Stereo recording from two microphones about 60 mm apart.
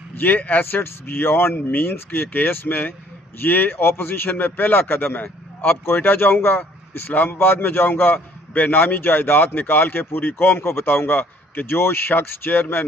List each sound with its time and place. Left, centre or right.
0.2 s a man's voice: left